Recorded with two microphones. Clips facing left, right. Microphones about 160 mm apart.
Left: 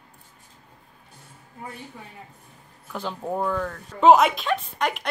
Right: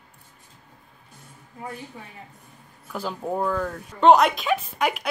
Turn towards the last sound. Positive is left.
turn(degrees=-5)  # may be behind; listen again after turning